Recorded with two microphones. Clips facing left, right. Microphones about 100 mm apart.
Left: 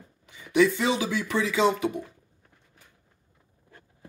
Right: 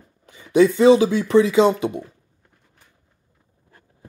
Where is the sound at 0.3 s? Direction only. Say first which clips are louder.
Right 6 dB; 35° right (ahead or behind).